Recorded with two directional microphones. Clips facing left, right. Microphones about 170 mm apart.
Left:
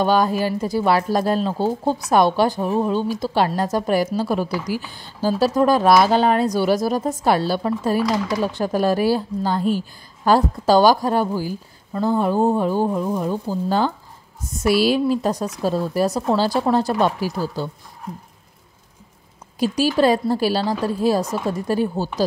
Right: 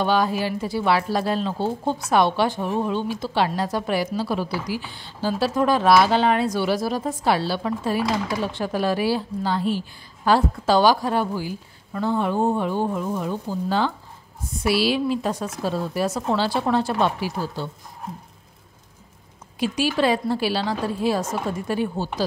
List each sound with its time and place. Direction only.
0.0 s a woman's voice: 45° left (ahead or behind)
19.6 s a woman's voice: 40° left (ahead or behind)